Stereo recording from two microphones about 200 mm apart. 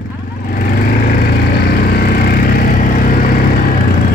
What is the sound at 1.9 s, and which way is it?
Vehicle, 50° left (ahead or behind).